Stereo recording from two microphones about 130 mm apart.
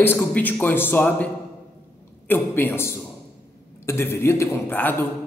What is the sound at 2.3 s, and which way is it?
A woman's voice, 15° left (ahead or behind).